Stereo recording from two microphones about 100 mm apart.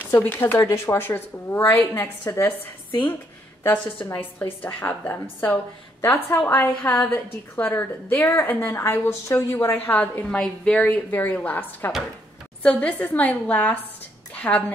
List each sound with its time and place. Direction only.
0.0 s a woman's voice: 20° left (ahead or behind)
3.7 s a woman's voice: 15° left (ahead or behind)
14.3 s a sound: 15° left (ahead or behind)